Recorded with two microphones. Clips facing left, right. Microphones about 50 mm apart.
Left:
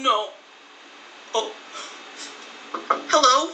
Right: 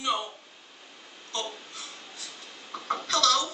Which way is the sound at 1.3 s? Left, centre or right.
Left.